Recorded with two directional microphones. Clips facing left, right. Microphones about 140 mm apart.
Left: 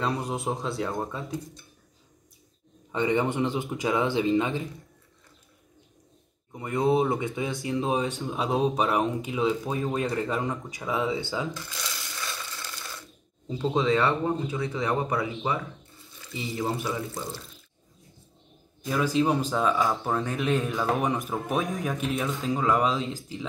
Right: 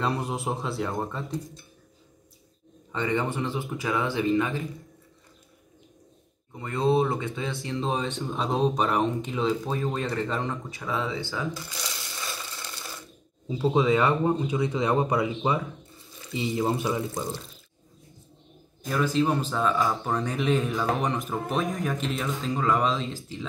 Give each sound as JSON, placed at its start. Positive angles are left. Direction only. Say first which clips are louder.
{"t": 0.0, "sound": "speech", "louder": "even", "side_deg": 0}
{"t": 2.9, "sound": "speech", "louder": "left 2 dB", "side_deg": 15}
{"t": 6.5, "sound": "speech", "louder": "even", "side_deg": 15}
{"t": 11.5, "sound": "speech", "louder": "right 1 dB", "side_deg": -10}
{"t": 11.9, "sound": "a sound", "louder": "even", "side_deg": -20}
{"t": 13.5, "sound": "speech", "louder": "right 2 dB", "side_deg": -10}
{"t": 18.9, "sound": "speech", "louder": "even", "side_deg": 10}
{"t": 20.1, "sound": "speech", "louder": "right 1 dB", "side_deg": 0}